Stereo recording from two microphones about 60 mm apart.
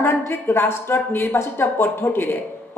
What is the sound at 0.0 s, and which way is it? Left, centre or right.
A woman's voice, left.